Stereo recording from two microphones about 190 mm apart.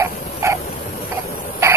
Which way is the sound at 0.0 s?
15° right (ahead or behind).